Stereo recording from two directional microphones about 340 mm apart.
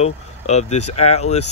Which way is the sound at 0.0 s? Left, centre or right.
Centre.